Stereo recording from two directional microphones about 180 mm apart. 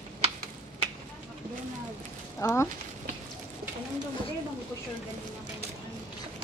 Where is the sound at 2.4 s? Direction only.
15° left (ahead or behind).